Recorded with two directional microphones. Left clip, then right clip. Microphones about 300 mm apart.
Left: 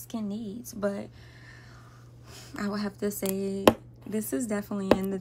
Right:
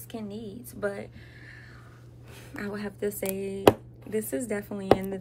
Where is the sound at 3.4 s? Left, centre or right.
Left.